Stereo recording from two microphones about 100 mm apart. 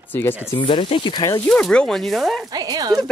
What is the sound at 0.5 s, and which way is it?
Speech, 65° left (ahead or behind).